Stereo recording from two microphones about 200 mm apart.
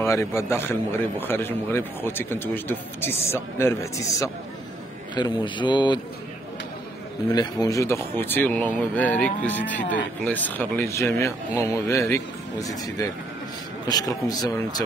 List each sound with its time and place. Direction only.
0.0 s a man's voice: 15° left (ahead or behind)
7.2 s a man's voice: 20° left (ahead or behind)